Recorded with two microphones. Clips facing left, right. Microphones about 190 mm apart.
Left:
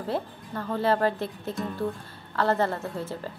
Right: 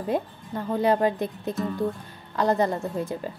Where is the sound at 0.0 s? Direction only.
15° right (ahead or behind).